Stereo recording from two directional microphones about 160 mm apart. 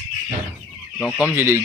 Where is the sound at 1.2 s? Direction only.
15° right (ahead or behind).